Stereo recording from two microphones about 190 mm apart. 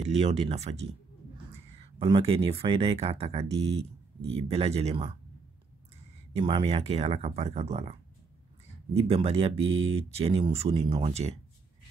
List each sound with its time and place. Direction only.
0.2 s speech: 35° right (ahead or behind)
6.3 s speech: 30° right (ahead or behind)